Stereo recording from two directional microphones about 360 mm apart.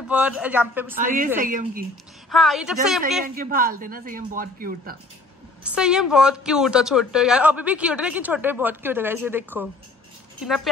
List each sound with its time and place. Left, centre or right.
0.1 s a woman's voice: centre
0.9 s speech: right
2.3 s a woman's voice: centre
3.3 s speech: right
5.6 s a woman's voice: centre